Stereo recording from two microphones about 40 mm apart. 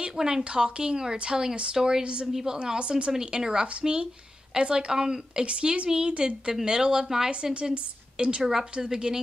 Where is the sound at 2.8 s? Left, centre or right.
Right.